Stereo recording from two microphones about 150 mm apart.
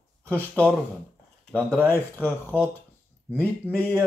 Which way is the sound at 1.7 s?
10° left (ahead or behind).